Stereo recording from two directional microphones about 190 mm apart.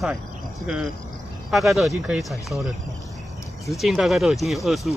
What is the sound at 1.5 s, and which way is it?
Speech, centre (ahead or behind).